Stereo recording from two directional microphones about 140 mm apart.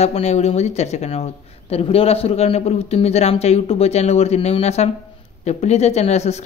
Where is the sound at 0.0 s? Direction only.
50° left (ahead or behind).